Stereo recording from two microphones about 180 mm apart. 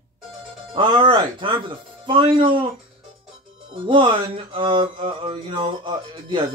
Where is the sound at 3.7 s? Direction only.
30° right (ahead or behind).